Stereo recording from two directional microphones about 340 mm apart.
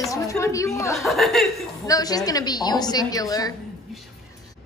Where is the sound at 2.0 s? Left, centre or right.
Centre.